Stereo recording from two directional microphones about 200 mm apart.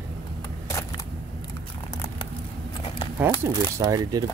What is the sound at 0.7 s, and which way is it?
Single-lens reflex camera, 15° left (ahead or behind).